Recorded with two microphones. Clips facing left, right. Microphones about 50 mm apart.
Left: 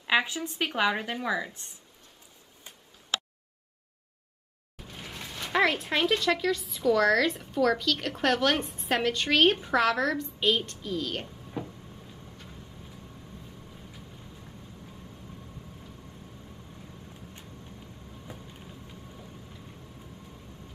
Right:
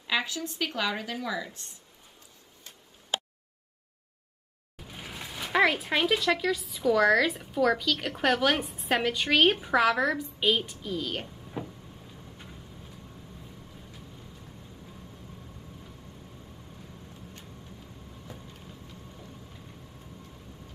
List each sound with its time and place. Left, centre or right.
0.0 s speech: left
4.7 s speech: centre
18.2 s vehicle: centre